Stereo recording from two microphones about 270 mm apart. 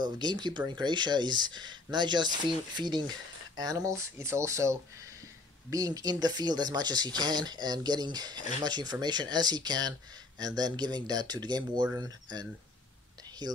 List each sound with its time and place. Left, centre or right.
0.0 s speech: centre